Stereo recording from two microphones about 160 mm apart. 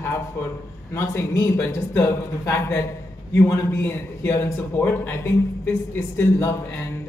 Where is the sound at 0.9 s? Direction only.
15° left (ahead or behind).